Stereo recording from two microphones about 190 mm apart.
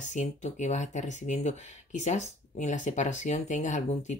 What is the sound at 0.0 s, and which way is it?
Speech, 40° left (ahead or behind).